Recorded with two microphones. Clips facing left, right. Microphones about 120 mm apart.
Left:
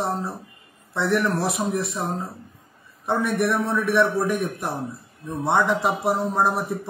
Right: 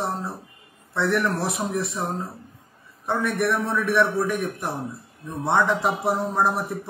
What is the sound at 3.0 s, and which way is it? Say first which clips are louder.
Speech: left 1 dB; 10° left (ahead or behind).